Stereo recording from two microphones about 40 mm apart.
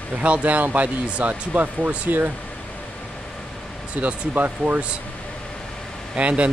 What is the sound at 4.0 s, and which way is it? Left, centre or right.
Speech, right.